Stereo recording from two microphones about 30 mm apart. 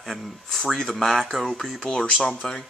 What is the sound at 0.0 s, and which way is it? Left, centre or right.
Speech, centre.